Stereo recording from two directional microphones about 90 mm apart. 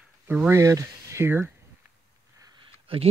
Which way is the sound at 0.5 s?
35° right (ahead or behind).